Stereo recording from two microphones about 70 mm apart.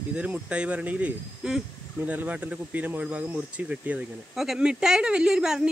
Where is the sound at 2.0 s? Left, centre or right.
Right.